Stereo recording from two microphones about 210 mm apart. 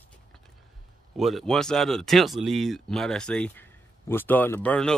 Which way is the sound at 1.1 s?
Centre (ahead or behind).